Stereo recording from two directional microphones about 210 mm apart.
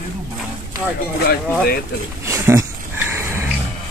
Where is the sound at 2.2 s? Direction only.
15° right (ahead or behind).